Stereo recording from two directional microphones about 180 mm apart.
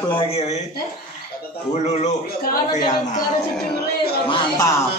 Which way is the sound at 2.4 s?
55° left (ahead or behind).